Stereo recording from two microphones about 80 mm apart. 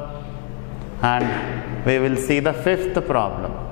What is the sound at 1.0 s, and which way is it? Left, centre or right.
A man's voice, centre.